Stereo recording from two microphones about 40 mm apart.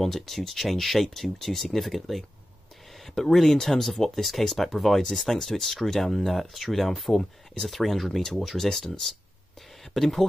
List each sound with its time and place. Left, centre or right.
0.0 s speech: centre
9.9 s speech: centre